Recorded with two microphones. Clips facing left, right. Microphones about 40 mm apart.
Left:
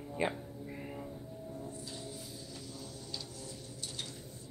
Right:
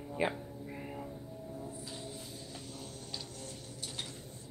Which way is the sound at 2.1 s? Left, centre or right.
Right.